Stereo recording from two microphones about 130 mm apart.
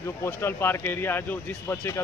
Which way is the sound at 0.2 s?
20° left (ahead or behind).